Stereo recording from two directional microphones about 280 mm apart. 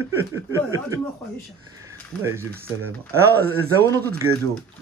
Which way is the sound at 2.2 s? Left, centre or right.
Centre.